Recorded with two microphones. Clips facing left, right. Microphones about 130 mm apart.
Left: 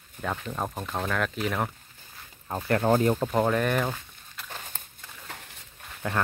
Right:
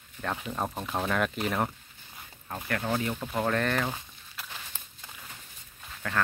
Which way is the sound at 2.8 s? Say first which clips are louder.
Left 9 dB; 45° left (ahead or behind).